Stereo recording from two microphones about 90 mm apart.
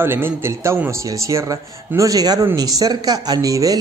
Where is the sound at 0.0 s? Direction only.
25° right (ahead or behind).